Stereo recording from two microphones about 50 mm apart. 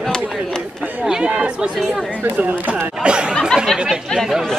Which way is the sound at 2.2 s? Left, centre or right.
Right.